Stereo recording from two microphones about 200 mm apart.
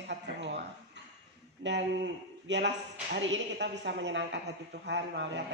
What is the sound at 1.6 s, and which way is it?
A man's voice, 60° right (ahead or behind).